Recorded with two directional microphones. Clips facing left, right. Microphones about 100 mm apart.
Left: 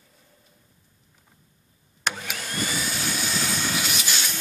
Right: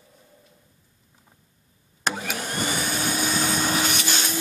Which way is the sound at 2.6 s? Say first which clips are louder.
Right 2 dB; 60° right (ahead or behind).